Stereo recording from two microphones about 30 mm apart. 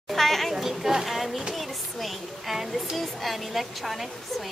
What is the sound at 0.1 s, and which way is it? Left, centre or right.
Speech, centre.